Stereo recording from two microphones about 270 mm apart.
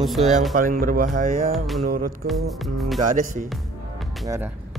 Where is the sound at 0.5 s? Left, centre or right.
Right.